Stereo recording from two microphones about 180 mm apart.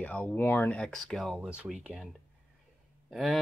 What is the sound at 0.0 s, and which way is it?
Speech, 10° left (ahead or behind).